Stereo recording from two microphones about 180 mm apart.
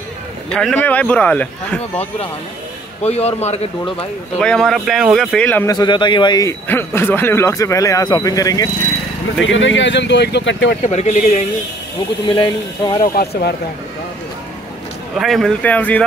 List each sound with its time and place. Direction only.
0.5 s speech: 5° left (ahead or behind)
3.0 s a man's voice: 35° left (ahead or behind)
4.4 s speech: 5° left (ahead or behind)
5.7 s a man's voice: 25° left (ahead or behind)
9.4 s speech: 90° left
10.8 s a man's voice: 40° left (ahead or behind)
12.3 s a man's voice: 25° left (ahead or behind)
13.0 s speech: 55° left (ahead or behind)
15.1 s speech: centre (ahead or behind)